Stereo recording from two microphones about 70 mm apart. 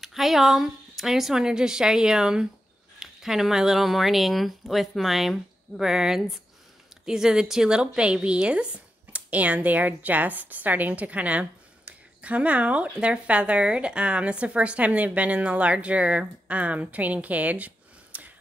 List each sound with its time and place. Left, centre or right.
0.0 s a woman's voice: centre; by 18.3 s right